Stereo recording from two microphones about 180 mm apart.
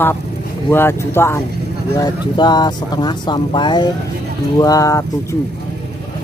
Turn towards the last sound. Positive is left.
turn(degrees=20)  # may be behind; listen again after turning